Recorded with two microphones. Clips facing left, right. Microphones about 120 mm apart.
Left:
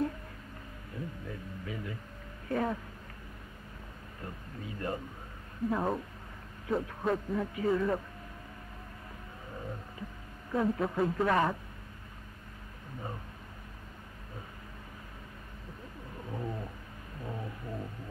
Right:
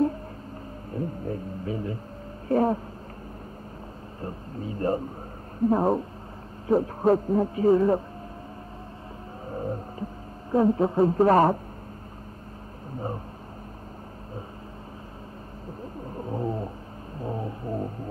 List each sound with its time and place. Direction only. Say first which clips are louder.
0.9 s speech: right 10 dB; 40° right (ahead or behind)
4.2 s a sound: right 9 dB; 35° right (ahead or behind)
5.7 s speech: right 9 dB; 35° right (ahead or behind)
9.5 s vehicle: right 11 dB; 40° right (ahead or behind)
10.5 s speech: right 9 dB; 30° right (ahead or behind)
16.1 s roaring cats: right 9 dB; 35° right (ahead or behind)
17.2 s a sound: right 9 dB; 35° right (ahead or behind)